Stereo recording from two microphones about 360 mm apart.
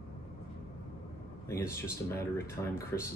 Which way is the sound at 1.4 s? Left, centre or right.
Centre.